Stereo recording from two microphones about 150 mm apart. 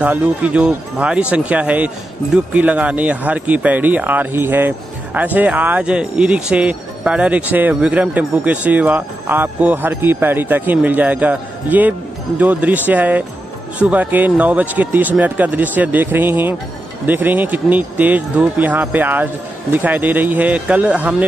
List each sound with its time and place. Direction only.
0.0 s speech: 10° right (ahead or behind)